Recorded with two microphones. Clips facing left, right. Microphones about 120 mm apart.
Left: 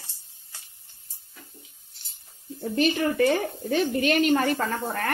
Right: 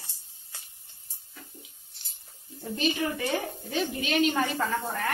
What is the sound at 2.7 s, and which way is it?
A woman's voice, 60° left (ahead or behind).